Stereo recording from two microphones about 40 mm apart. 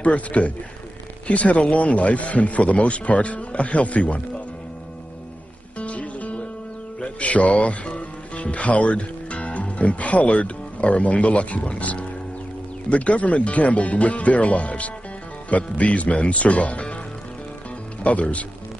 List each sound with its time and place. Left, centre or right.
0.0 s a man's voice: left
5.8 s music: left
7.0 s a man's voice: left
18.0 s a man's voice: left